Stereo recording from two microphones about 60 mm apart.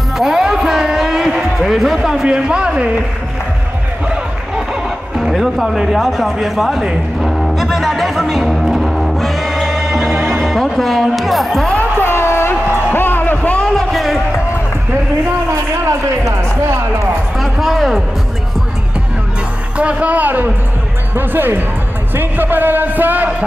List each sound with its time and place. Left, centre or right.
0.2 s a sound: centre
2.2 s speech: centre
5.1 s speech: centre
7.2 s music: centre
10.1 s music: right
10.4 s speech: centre
12.0 s a sound: left
13.7 s a sound: centre
15.9 s speech: right
17.4 s speech: centre
19.8 s speech: right